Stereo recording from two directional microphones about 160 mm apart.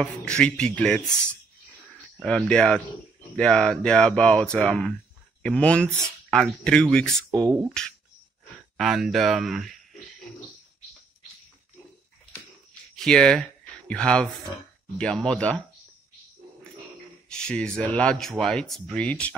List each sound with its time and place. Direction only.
0.0 s speech: 5° left (ahead or behind)
7.2 s speech: 20° right (ahead or behind)
8.7 s speech: centre (ahead or behind)
12.9 s speech: 5° left (ahead or behind)
17.3 s speech: 5° left (ahead or behind)